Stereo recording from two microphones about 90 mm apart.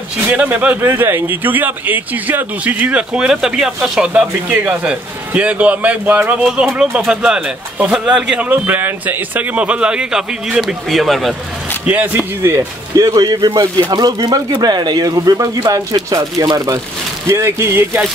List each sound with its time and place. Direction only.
0.3 s speech: 15° right (ahead or behind)
6.4 s speech: 5° right (ahead or behind)
8.5 s speech: 20° right (ahead or behind); by 11.3 s centre (ahead or behind)
11.8 s speech: 15° right (ahead or behind)
12.5 s speech: 40° right (ahead or behind)
17.3 s speech: 30° right (ahead or behind)